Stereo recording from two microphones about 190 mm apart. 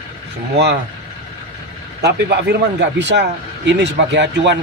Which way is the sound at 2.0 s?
60° right (ahead or behind).